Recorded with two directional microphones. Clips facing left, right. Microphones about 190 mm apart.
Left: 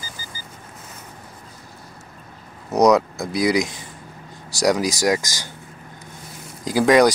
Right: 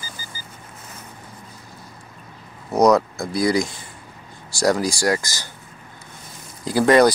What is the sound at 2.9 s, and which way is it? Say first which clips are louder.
Speech: even; 15° left (ahead or behind).